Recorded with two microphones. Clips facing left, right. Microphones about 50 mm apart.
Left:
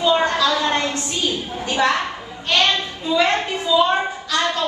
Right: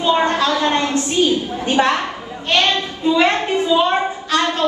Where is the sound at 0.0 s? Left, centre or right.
Right.